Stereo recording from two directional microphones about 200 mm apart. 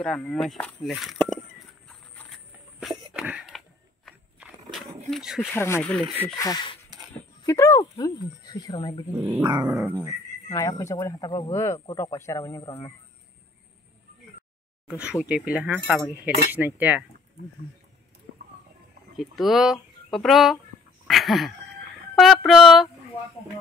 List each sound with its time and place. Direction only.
0.0 s speech: 5° left (ahead or behind)
1.9 s horse: 5° left (ahead or behind)
2.8 s a sound: centre (ahead or behind)
5.4 s speech: 10° left (ahead or behind)
6.2 s speech: 15° left (ahead or behind)
9.2 s speech: 15° right (ahead or behind)
9.9 s speech: 15° left (ahead or behind)
14.9 s speech: 5° right (ahead or behind)
19.1 s speech: centre (ahead or behind)
21.1 s a sound: centre (ahead or behind)
22.1 s speech: centre (ahead or behind)